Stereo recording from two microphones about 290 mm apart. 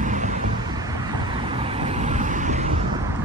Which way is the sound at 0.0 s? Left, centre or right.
Right.